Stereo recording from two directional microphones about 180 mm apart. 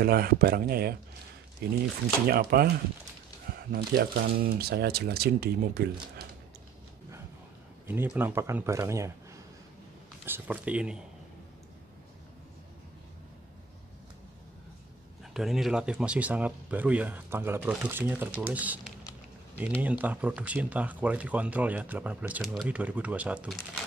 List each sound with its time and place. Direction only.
0.0 s speech: 55° right (ahead or behind)
3.7 s speech: 60° right (ahead or behind)
7.8 s speech: 10° right (ahead or behind)
10.2 s speech: 10° right (ahead or behind)
15.3 s speech: centre (ahead or behind)
19.8 s speech: 10° right (ahead or behind)